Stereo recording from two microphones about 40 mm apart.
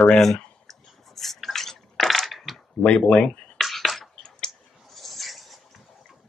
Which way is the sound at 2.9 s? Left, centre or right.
Left.